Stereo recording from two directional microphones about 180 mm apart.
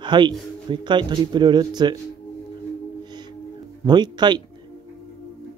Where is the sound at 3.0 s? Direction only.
25° right (ahead or behind).